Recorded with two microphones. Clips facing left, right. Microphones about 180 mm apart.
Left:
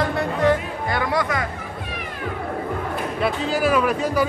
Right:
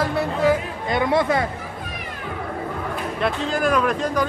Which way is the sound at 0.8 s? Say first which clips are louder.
Right 4 dB; 20° right (ahead or behind).